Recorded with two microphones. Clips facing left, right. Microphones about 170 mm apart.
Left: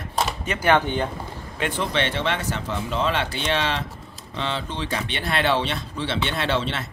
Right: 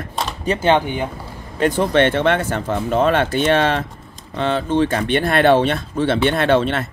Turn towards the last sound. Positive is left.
turn(degrees=-55)  # may be behind; listen again after turning